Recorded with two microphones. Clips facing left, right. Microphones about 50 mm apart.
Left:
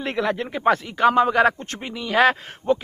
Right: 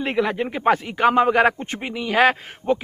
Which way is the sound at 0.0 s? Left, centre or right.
Centre.